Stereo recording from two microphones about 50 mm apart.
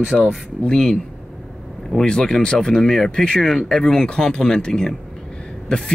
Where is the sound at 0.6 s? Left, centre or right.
Centre.